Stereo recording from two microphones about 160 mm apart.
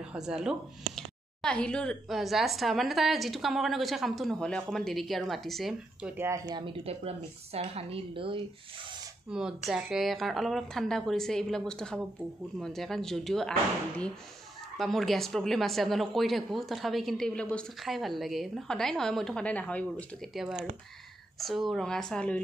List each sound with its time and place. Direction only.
0.0 s a woman's voice: 5° right (ahead or behind)
6.6 s speech: 35° right (ahead or behind)
9.3 s a woman's voice: 5° right (ahead or behind)
20.3 s a woman's voice: centre (ahead or behind)
21.6 s a woman's voice: 5° left (ahead or behind)